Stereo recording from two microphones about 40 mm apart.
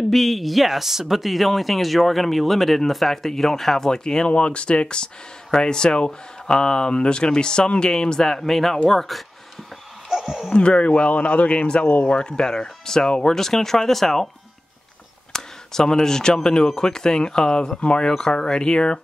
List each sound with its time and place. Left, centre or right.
0.1 s speech: centre
4.3 s speech: left; by 9.2 s centre
10.0 s a sound: centre
10.5 s speech: left
11.8 s speech: left
12.1 s speech: centre
15.3 s speech: centre